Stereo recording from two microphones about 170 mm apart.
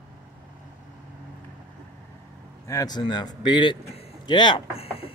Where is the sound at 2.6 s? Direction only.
20° left (ahead or behind).